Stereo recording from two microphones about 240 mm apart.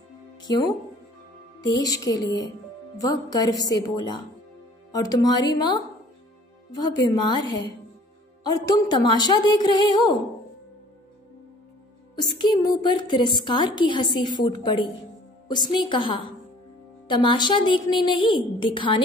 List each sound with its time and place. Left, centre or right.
0.4 s a woman's voice: centre
7.0 s a woman's voice: centre
12.2 s a woman's voice: centre